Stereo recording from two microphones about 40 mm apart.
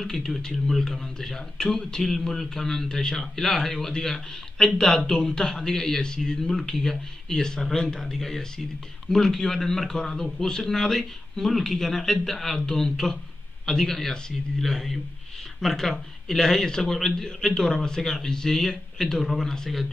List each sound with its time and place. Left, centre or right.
0.0 s a man's voice: centre